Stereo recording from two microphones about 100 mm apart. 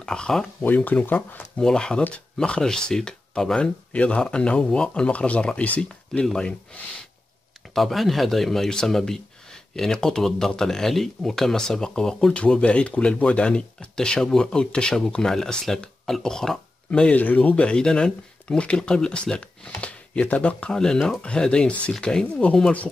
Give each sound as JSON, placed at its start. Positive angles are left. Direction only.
{"t": 0.0, "sound": "speech", "side_deg": 5}
{"t": 1.6, "sound": "speech", "side_deg": 5}
{"t": 7.7, "sound": "speech", "side_deg": 0}